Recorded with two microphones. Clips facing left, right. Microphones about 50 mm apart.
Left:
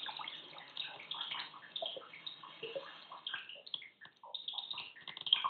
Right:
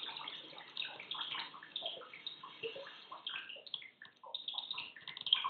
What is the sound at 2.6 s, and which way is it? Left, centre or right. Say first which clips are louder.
Bathtub: left 1 dB; centre.